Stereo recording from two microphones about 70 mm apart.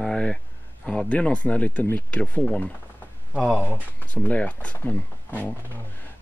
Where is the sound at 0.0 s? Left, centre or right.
Centre.